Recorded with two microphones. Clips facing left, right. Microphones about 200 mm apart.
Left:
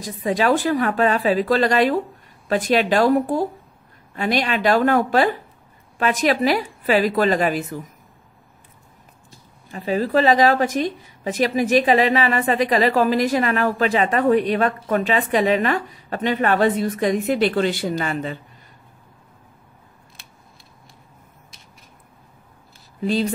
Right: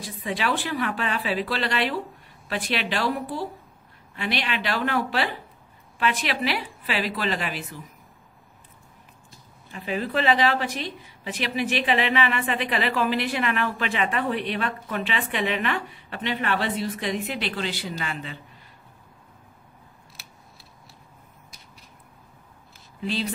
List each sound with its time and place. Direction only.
0.0 s a woman's voice: 45° left (ahead or behind)
9.7 s a woman's voice: 40° left (ahead or behind)